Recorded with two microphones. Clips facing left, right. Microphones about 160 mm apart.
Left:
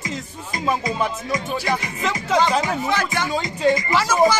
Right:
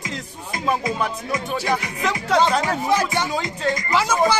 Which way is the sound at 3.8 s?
5° left (ahead or behind).